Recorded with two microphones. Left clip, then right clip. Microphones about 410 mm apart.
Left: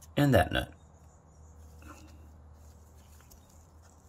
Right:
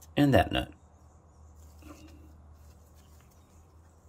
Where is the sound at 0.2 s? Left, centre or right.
Centre.